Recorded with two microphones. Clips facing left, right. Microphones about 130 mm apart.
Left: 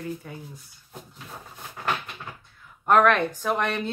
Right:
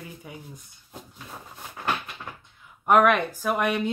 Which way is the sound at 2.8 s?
10° right (ahead or behind).